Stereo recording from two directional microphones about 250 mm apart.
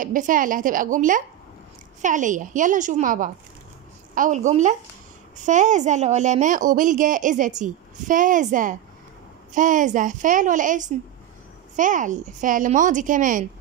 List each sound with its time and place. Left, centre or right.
0.0 s a woman's voice: right